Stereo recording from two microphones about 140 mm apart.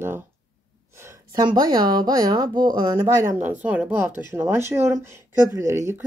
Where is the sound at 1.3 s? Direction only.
30° right (ahead or behind).